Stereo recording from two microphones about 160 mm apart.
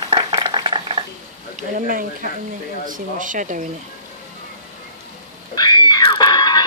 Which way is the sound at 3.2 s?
55° right (ahead or behind).